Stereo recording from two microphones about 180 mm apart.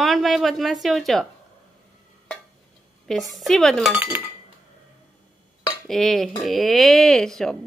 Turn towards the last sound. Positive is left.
turn(degrees=0)  # may be behind; listen again after turning